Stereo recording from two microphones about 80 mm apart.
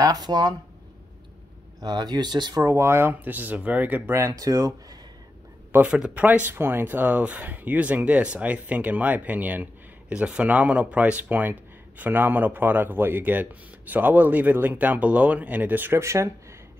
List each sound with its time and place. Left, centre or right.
0.0 s speech: right
1.8 s speech: right
2.6 s speech: right
4.3 s speech: right
5.7 s speech: centre
6.2 s speech: right